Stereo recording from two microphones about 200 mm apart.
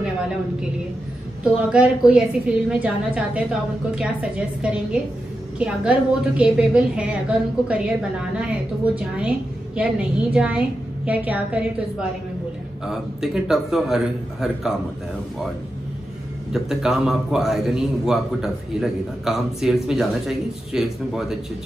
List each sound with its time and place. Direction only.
0.0 s a woman's voice: 5° right (ahead or behind)
12.8 s a man's voice: centre (ahead or behind)
16.5 s a man's voice: centre (ahead or behind)